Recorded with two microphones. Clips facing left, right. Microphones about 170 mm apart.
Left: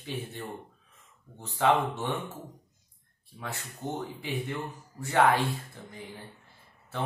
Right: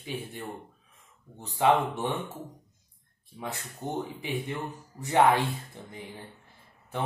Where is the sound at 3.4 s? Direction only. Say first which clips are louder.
Right 1 dB; 15° right (ahead or behind).